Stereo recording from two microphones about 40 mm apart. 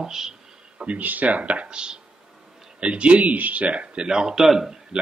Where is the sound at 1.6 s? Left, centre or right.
Right.